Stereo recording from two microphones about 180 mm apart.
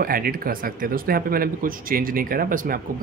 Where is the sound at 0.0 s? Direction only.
55° right (ahead or behind).